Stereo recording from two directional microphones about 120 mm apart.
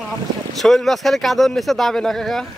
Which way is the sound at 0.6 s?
Centre (ahead or behind).